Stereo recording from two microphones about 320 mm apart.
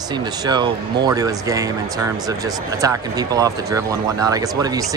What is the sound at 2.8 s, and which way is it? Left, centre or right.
Speech, centre.